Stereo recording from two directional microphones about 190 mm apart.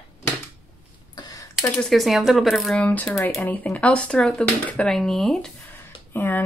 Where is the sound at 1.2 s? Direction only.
20° left (ahead or behind).